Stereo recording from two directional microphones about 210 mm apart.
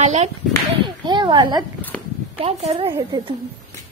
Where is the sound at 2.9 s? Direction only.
15° right (ahead or behind).